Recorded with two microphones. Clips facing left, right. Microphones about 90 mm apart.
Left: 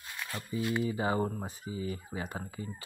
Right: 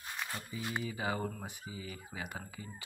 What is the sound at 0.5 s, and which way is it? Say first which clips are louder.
Speech: left 10 dB; 35° left (ahead or behind).